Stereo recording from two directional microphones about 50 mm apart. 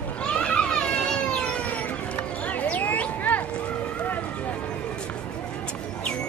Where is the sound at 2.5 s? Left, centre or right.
Left.